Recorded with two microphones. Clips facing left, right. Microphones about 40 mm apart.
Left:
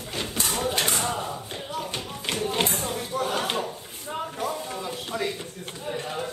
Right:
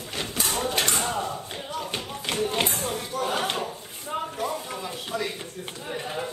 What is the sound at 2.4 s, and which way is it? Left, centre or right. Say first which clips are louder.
Tap: even; centre.